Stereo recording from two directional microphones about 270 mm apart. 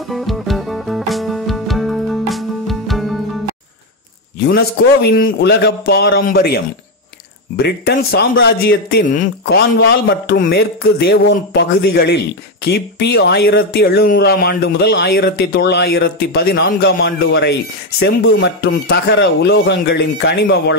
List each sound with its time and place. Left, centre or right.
0.1 s music: centre
5.0 s speech: left